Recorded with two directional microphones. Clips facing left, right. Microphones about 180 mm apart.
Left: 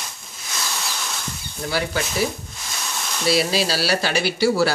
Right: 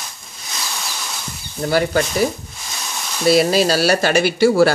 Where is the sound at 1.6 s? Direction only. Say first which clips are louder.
Right 7 dB; 50° right (ahead or behind).